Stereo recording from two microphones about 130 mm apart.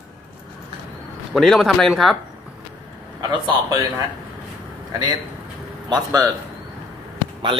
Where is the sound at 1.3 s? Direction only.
Centre (ahead or behind).